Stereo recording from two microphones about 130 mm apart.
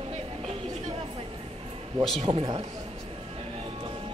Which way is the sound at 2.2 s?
40° right (ahead or behind).